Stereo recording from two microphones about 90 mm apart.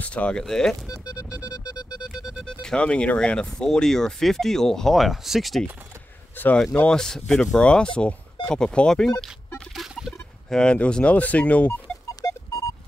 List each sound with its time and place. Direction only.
0.0 s speech: 15° left (ahead or behind)
1.4 s music: 50° left (ahead or behind)
2.4 s speech: 10° left (ahead or behind)
6.3 s speech: 20° left (ahead or behind)
9.8 s a sound: 5° right (ahead or behind)
10.5 s speech: 10° left (ahead or behind)
12.2 s a sound: 40° left (ahead or behind)